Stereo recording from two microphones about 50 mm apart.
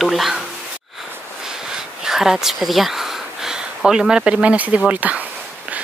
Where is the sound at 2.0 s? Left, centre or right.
Centre.